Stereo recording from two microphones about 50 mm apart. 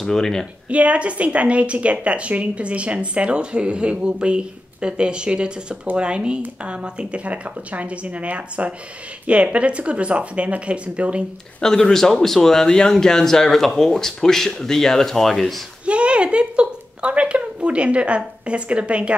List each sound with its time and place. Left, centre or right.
0.0 s speech: centre
0.7 s a woman's voice: right
11.6 s speech: centre
15.8 s speech: right